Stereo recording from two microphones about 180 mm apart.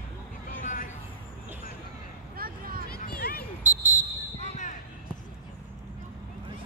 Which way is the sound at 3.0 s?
55° left (ahead or behind).